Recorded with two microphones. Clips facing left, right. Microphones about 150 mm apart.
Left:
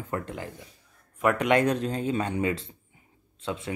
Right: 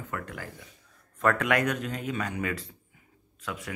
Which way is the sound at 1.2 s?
15° left (ahead or behind).